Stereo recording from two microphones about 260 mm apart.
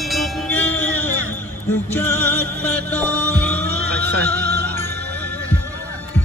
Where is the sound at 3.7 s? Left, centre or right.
Centre.